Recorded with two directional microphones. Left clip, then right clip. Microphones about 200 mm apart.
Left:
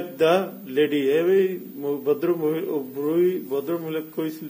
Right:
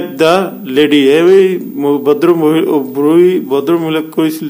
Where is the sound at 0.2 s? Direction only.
20° right (ahead or behind).